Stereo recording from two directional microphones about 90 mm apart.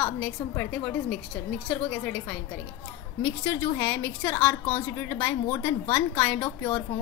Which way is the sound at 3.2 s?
20° left (ahead or behind).